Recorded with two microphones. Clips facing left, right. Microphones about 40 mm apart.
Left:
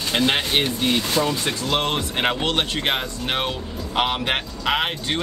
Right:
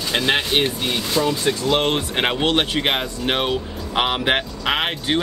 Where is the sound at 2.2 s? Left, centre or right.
Centre.